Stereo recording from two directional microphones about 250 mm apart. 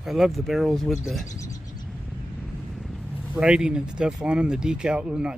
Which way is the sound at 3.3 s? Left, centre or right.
Centre.